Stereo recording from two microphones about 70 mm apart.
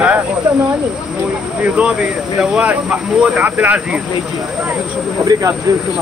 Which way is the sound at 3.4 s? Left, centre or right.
Right.